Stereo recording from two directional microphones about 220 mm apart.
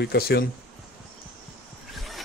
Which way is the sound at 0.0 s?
45° left (ahead or behind).